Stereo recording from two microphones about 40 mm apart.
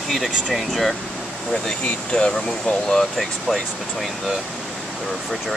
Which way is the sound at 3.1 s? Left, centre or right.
Centre.